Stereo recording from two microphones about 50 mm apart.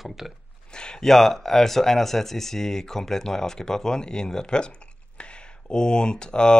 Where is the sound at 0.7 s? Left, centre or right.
Centre.